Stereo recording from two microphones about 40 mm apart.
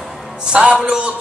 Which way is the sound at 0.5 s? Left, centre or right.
Right.